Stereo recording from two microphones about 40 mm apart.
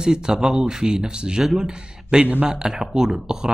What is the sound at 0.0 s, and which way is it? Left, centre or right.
Speech, centre.